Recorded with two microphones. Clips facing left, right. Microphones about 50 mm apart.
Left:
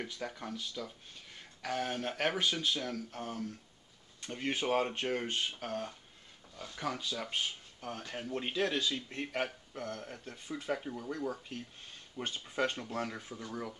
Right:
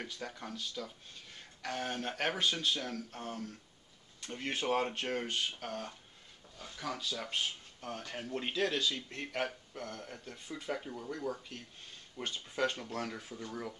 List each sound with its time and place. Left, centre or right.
0.4 s speech: centre
10.5 s speech: centre